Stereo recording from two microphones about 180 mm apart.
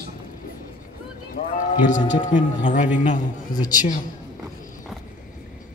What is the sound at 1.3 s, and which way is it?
A man's voice, 45° left (ahead or behind).